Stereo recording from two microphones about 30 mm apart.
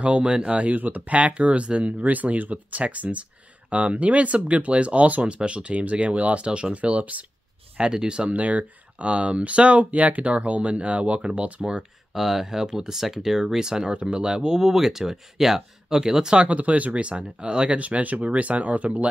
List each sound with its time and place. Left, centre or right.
0.0 s speech: right
0.7 s speech: right
2.5 s speech: right
6.4 s speech: right
7.7 s speech: right
8.3 s speech: right
12.1 s speech: centre
16.0 s speech: right
16.3 s speech: right
17.4 s speech: right
17.7 s speech: right